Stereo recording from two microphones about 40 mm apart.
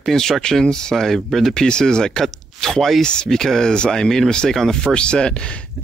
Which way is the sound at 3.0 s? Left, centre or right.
Centre.